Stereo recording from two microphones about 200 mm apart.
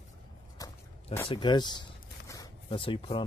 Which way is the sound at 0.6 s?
20° left (ahead or behind).